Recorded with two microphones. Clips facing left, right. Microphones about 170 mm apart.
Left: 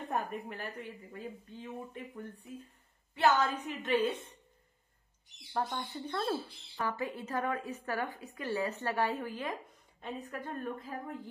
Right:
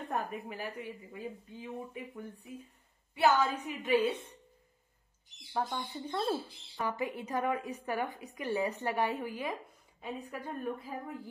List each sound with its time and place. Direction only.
0.1 s a woman's voice: centre (ahead or behind)
5.5 s speech: centre (ahead or behind)
5.9 s a woman's voice: 15° right (ahead or behind)